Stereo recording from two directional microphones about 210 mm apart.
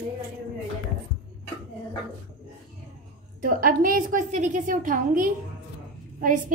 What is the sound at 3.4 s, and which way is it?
A woman's voice, 40° right (ahead or behind).